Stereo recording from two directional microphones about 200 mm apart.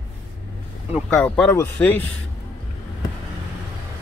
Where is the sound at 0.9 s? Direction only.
5° left (ahead or behind).